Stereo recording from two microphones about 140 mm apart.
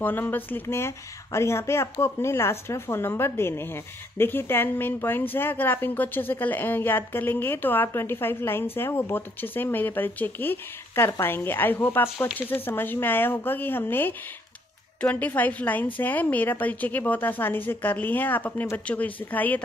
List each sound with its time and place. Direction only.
0.0 s speech: 15° left (ahead or behind)